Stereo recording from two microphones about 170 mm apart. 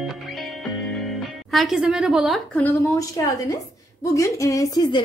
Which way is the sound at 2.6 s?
20° left (ahead or behind).